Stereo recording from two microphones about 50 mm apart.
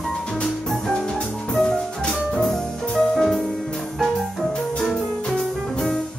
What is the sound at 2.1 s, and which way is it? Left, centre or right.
Music, centre.